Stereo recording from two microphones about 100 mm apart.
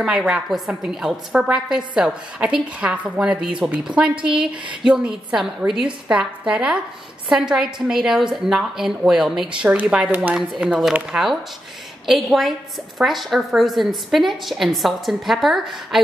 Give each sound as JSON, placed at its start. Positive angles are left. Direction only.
{"t": 0.0, "sound": "a woman's voice", "side_deg": -10}